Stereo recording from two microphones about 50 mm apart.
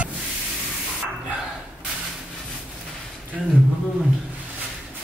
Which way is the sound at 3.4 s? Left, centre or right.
Centre.